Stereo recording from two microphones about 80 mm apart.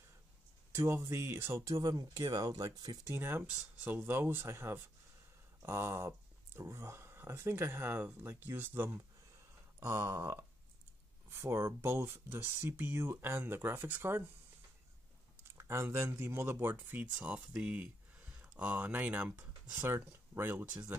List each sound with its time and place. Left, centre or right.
0.7 s speech: right
1.8 s speech: right
3.1 s speech: right
15.5 s speech: right